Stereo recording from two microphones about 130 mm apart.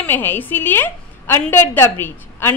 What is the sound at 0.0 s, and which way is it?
A woman's voice, 15° left (ahead or behind).